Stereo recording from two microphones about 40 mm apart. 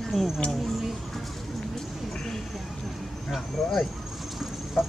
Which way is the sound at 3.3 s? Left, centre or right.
Centre.